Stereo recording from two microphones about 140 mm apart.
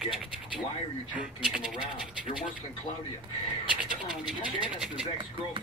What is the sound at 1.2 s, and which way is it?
Speech, 5° right (ahead or behind).